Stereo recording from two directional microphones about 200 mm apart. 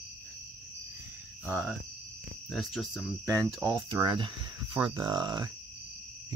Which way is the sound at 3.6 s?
20° right (ahead or behind).